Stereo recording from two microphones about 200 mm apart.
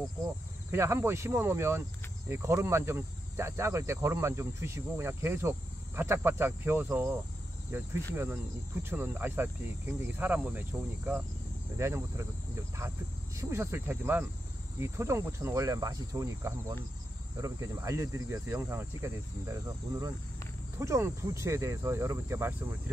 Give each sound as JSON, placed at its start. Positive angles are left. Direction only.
{"t": 0.7, "sound": "speech", "side_deg": -15}